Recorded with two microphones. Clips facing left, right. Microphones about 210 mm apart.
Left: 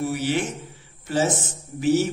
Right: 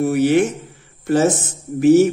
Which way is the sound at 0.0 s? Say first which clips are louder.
Right 9 dB; 55° right (ahead or behind).